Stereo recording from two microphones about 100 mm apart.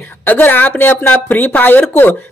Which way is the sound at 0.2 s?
20° left (ahead or behind).